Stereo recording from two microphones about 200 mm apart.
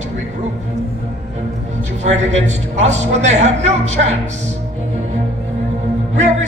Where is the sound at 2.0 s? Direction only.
35° right (ahead or behind).